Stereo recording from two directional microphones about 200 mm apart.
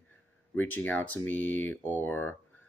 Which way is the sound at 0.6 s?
10° left (ahead or behind).